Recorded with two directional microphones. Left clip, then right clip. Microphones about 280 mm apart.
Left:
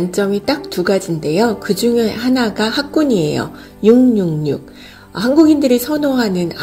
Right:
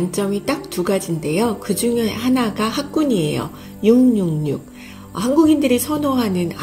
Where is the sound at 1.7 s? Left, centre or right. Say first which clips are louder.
Left 5 dB; centre.